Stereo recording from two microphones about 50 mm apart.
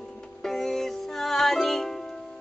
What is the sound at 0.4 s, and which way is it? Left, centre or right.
Music, centre.